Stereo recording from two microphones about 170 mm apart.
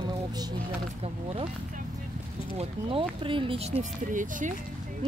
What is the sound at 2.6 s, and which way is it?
Speech, 30° right (ahead or behind).